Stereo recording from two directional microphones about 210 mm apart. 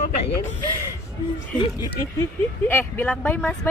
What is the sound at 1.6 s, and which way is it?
Speech, 15° left (ahead or behind).